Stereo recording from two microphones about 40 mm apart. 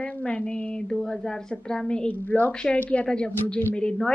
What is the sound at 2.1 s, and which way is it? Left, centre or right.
Speech, left.